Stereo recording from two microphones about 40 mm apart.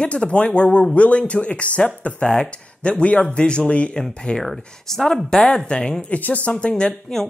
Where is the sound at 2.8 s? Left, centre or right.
Left.